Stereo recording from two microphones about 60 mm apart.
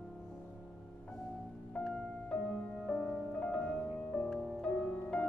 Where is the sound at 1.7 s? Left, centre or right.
Centre.